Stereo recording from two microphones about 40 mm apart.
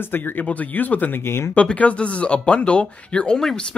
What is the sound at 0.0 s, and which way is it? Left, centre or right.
Speech, left.